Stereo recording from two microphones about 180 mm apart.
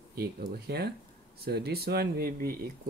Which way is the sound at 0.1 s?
60° right (ahead or behind).